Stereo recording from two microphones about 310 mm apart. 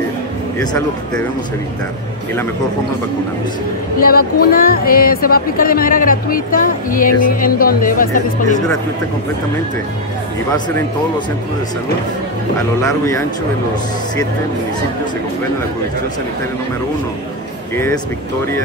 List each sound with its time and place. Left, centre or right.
0.6 s speech: centre
4.0 s speech: left
17.7 s speech: centre